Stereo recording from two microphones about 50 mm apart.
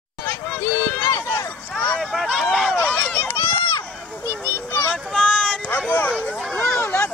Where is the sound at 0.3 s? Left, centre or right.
Left.